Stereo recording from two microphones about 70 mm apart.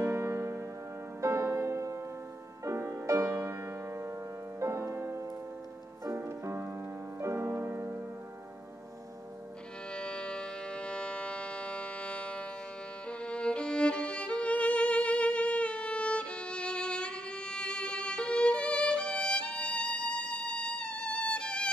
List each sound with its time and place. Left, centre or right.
0.0 s music: right
9.9 s civil defense siren: centre
13.2 s music: centre